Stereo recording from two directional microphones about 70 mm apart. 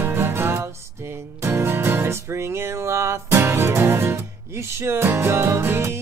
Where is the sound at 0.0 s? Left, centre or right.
Right.